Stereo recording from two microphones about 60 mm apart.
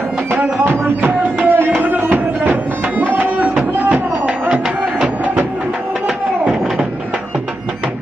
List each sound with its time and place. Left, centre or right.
0.3 s music: right
4.3 s music: centre
6.0 s a sound: centre